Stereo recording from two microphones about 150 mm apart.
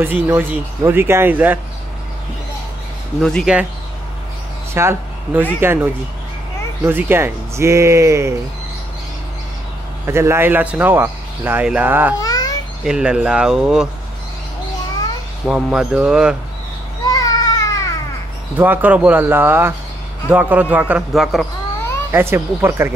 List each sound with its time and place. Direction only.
0.0 s speech: 15° right (ahead or behind)
3.2 s speech: centre (ahead or behind)
4.7 s speech: 15° right (ahead or behind)
10.0 s speech: 15° right (ahead or behind)
12.2 s babbling: 25° left (ahead or behind)
12.8 s speech: 5° right (ahead or behind)
15.4 s speech: 5° right (ahead or behind)
17.0 s a sound: 25° left (ahead or behind)
18.6 s speech: 10° right (ahead or behind)
22.1 s speech: 15° right (ahead or behind)